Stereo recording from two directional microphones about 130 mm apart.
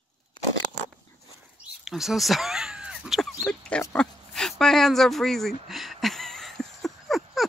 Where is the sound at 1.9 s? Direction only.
Centre (ahead or behind).